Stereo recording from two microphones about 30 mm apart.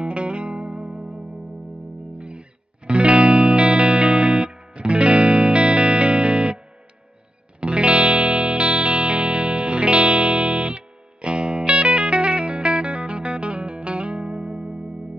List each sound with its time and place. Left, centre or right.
0.0 s music: right
2.1 s music: right
7.6 s music: right